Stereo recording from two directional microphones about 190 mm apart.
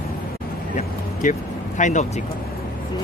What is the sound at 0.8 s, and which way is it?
Vehicle, 40° left (ahead or behind).